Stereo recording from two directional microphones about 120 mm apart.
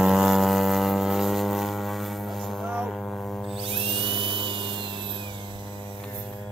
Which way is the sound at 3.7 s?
50° right (ahead or behind).